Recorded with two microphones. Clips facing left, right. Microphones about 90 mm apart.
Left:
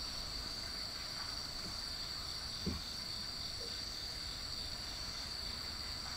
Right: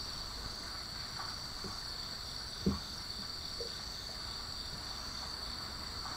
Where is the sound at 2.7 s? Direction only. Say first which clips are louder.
Right 8 dB; 30° right (ahead or behind).